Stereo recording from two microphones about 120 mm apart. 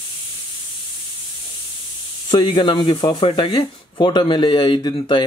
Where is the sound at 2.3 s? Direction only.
40° left (ahead or behind).